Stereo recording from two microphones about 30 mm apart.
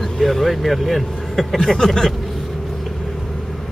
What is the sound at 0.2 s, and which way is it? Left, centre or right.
Speech, centre.